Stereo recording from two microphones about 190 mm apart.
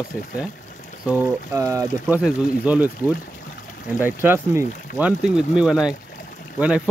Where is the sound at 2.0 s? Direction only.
5° right (ahead or behind).